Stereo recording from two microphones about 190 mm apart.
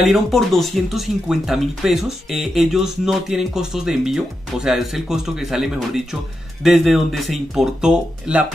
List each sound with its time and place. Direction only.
0.0 s speech: centre (ahead or behind)